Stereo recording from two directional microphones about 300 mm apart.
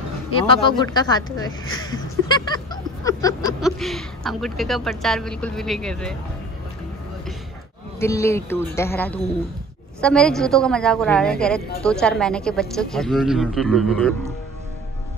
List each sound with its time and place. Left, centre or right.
0.4 s speech: centre
1.9 s a sound: centre
3.6 s a woman's voice: centre
8.0 s a woman's voice: centre